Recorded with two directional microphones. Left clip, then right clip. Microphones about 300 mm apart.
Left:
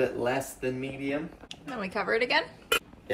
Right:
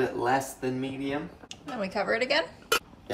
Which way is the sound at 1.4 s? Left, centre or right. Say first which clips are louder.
Right 2 dB; centre.